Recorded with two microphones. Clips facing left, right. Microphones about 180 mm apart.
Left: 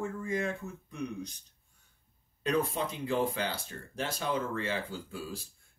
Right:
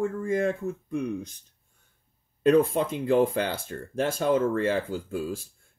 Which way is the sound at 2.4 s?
50° right (ahead or behind).